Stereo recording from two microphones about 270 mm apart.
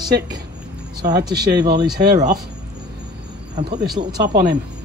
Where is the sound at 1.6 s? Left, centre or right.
Centre.